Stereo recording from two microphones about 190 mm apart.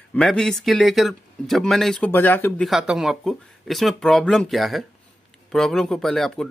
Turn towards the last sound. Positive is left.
turn(degrees=0)  # may be behind; listen again after turning